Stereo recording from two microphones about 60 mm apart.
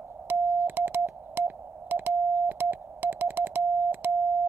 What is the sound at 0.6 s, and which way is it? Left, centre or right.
Music, right.